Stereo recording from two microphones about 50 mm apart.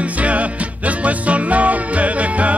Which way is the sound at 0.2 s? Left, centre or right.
Right.